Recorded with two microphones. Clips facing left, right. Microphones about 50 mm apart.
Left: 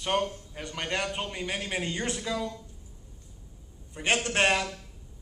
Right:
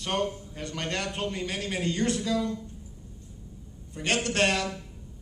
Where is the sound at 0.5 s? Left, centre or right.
Centre.